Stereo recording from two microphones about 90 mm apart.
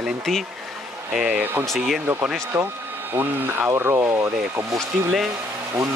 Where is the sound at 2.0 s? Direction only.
25° right (ahead or behind).